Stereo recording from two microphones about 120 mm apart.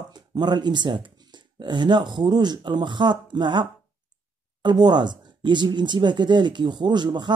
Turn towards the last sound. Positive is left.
turn(degrees=-40)  # may be behind; listen again after turning